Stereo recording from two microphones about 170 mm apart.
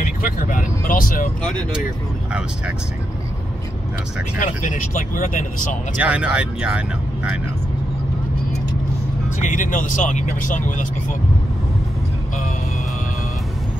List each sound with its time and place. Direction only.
0.0 s speech: 50° left (ahead or behind)
4.4 s speech: 50° left (ahead or behind)
5.9 s speech: 5° right (ahead or behind)
9.4 s speech: 50° left (ahead or behind)